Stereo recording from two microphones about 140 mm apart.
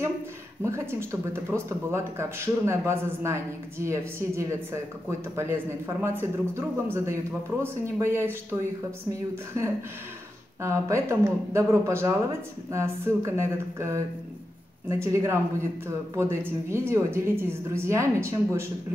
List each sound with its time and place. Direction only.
0.6 s speech: 20° right (ahead or behind)
5.9 s a man's voice: 15° right (ahead or behind)